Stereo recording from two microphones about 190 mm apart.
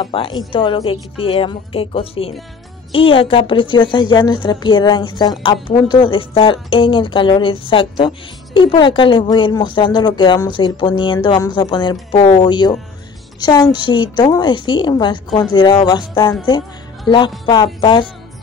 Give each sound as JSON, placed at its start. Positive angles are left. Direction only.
{"t": 0.0, "sound": "speech", "side_deg": 25}
{"t": 17.7, "sound": "speech", "side_deg": 25}